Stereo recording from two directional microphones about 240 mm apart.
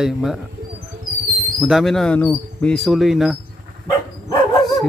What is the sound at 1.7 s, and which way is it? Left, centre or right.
Speech, centre.